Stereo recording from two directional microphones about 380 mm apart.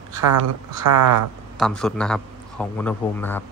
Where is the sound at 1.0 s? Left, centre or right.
Right.